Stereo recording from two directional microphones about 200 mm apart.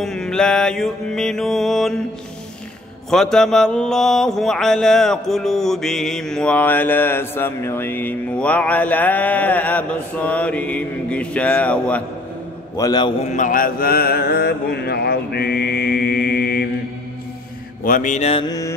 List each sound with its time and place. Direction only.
0.0 s mantra: 5° left (ahead or behind)
3.1 s mantra: centre (ahead or behind)
12.7 s a man's voice: 20° left (ahead or behind)
13.3 s mantra: 40° left (ahead or behind)
17.8 s mantra: 40° left (ahead or behind)